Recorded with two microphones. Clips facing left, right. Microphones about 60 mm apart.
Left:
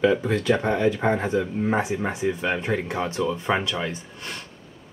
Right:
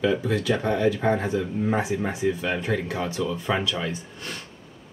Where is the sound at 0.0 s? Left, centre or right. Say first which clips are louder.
Left 2 dB; left.